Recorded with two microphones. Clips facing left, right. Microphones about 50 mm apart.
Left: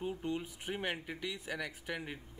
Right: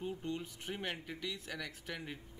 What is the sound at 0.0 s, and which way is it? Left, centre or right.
Speech, centre.